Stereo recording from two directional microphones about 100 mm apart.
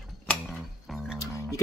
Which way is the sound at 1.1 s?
30° left (ahead or behind).